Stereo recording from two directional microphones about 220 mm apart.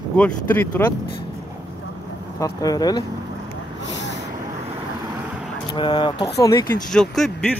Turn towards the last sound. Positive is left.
turn(degrees=0)  # may be behind; listen again after turning